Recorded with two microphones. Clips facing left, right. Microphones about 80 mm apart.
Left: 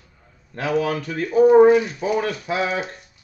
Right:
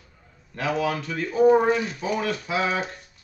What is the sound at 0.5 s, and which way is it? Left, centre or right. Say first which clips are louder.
Speech: left 3 dB; left.